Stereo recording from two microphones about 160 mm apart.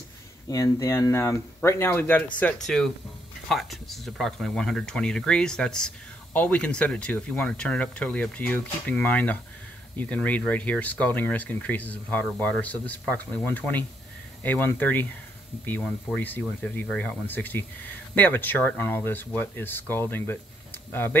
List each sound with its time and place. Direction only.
0.5 s speech: 20° left (ahead or behind)